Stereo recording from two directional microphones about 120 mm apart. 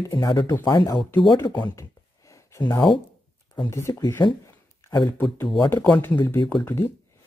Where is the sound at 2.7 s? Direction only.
40° left (ahead or behind).